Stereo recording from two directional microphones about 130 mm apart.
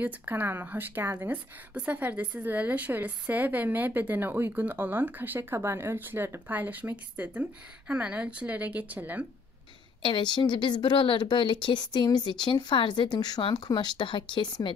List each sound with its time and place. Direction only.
0.0 s speech: 15° right (ahead or behind)
10.0 s a woman's voice: 35° left (ahead or behind)